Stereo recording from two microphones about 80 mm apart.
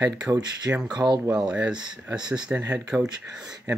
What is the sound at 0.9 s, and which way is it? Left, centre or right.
Speech, right.